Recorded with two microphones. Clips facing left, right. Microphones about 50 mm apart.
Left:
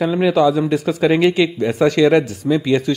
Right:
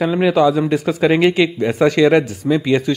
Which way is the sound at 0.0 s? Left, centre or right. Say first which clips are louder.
Right 1 dB; right.